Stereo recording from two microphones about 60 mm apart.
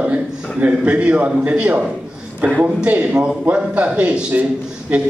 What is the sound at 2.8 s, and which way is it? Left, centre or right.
A man's voice, right.